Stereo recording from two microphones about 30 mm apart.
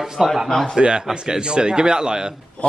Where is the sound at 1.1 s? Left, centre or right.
Right.